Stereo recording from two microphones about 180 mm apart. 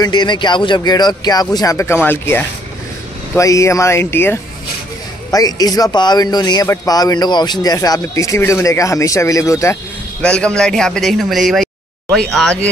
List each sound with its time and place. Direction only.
0.0 s speech: 25° left (ahead or behind)
10.2 s speech: 5° left (ahead or behind)